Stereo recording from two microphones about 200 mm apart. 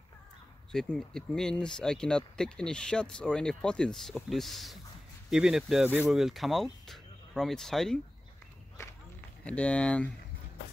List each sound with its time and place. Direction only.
0.7 s speech: 5° left (ahead or behind)
9.4 s speech: 5° left (ahead or behind)